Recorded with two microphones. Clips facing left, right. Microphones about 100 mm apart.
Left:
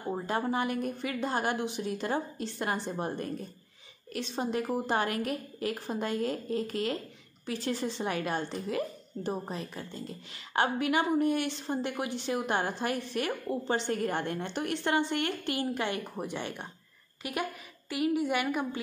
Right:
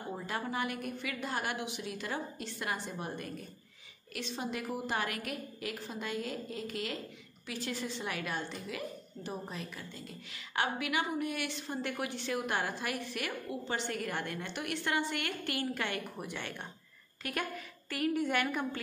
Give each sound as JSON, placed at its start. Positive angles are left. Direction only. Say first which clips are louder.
{"t": 0.1, "sound": "a woman's voice", "louder": "left 7 dB", "side_deg": 35}